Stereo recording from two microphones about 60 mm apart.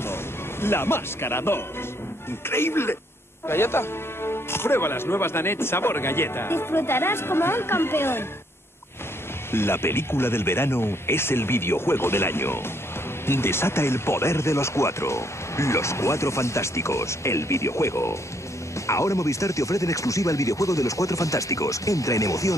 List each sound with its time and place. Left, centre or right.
0.0 s speech: left
9.5 s speech: left